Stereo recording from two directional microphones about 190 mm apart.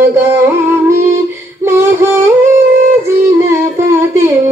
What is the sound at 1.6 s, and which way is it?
Female singing, 15° right (ahead or behind).